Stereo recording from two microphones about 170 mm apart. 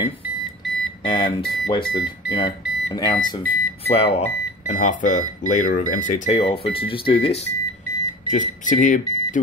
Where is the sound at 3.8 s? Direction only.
35° left (ahead or behind).